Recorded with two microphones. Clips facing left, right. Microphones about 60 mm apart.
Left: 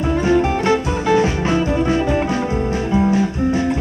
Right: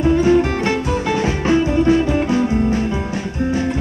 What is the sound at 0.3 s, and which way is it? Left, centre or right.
Music, centre.